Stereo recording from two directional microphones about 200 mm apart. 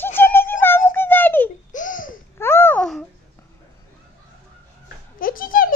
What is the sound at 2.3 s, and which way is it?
Babbling, 10° left (ahead or behind).